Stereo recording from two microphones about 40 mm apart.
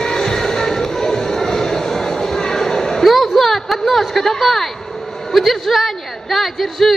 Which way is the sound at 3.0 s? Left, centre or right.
Centre.